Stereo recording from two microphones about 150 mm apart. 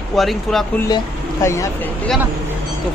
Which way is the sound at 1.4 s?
20° left (ahead or behind).